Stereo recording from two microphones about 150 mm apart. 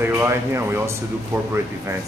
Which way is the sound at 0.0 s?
15° right (ahead or behind).